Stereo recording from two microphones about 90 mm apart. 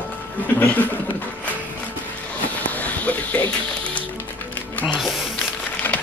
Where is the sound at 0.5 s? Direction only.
20° left (ahead or behind).